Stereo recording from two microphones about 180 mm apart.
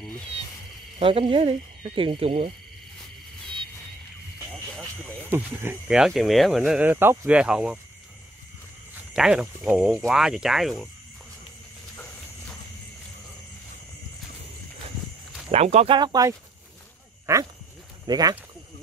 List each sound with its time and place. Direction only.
0.9 s speech: 30° right (ahead or behind)
5.3 s speech: 10° right (ahead or behind)
9.1 s speech: 5° right (ahead or behind)
15.5 s speech: 35° right (ahead or behind)
16.0 s speech: 20° right (ahead or behind)